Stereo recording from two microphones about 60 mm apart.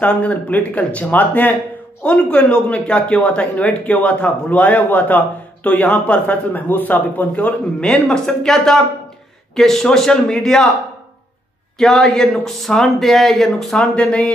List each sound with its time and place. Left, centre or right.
0.0 s speech: left
7.8 s a man's voice: centre
11.8 s speech: centre
13.9 s speech: centre